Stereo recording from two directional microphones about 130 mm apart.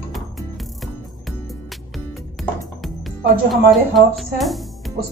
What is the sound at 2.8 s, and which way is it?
Speech, centre (ahead or behind).